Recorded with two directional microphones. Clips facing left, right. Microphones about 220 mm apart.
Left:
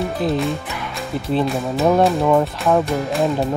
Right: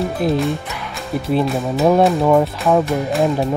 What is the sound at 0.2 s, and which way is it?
Speech, 10° right (ahead or behind).